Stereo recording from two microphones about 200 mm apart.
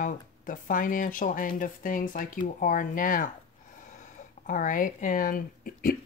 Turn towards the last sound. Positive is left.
turn(degrees=45)  # may be behind; listen again after turning